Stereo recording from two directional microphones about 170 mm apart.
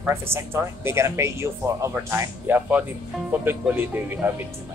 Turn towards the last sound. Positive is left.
turn(degrees=-10)  # may be behind; listen again after turning